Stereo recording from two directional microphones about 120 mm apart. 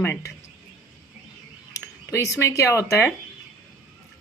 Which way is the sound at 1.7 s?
25° left (ahead or behind).